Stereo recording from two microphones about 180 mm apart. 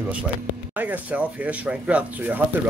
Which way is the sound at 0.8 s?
10° right (ahead or behind).